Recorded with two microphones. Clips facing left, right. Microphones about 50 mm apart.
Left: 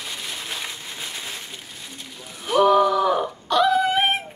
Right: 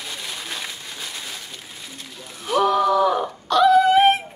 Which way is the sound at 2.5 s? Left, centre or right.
Centre.